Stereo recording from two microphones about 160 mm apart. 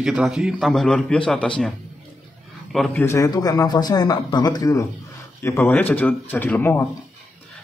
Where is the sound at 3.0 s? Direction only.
20° left (ahead or behind).